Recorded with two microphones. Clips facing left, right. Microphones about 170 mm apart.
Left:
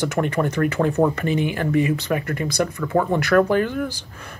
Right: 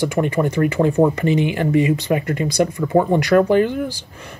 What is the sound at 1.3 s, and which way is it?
Speech, 50° left (ahead or behind).